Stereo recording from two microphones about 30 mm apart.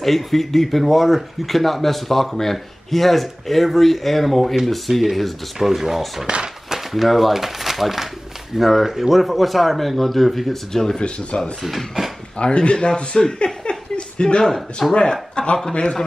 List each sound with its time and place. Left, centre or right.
0.0 s speech: centre
5.6 s speech: centre
6.2 s speech: right
6.7 s speech: centre
10.7 s speech: centre
11.0 s speech: left
11.6 s speech: centre
12.4 s speech: left
14.4 s speech: centre
15.0 s speech: left